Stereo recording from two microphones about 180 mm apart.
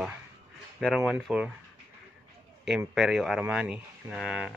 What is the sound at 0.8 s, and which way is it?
Speech, centre (ahead or behind).